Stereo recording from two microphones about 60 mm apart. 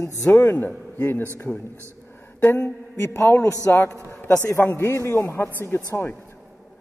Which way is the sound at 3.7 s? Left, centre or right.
Left.